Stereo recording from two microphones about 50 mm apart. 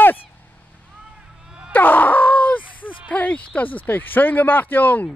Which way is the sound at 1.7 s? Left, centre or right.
Left.